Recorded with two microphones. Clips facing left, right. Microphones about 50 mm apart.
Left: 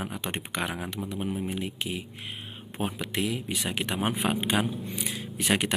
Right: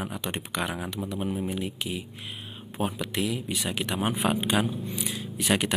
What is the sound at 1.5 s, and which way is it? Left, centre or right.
Speech, centre.